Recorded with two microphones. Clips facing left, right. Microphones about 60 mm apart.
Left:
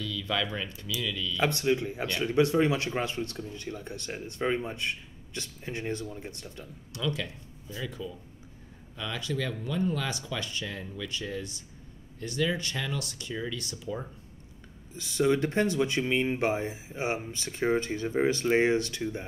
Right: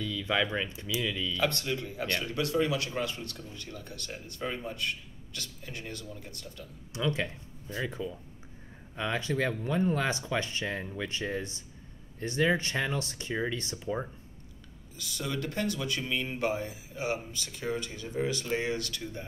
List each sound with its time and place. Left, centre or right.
0.0 s speech: right
1.4 s speech: left
6.9 s speech: right
15.0 s speech: left